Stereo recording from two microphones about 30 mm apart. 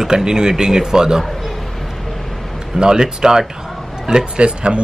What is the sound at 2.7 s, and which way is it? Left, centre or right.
Speech, right.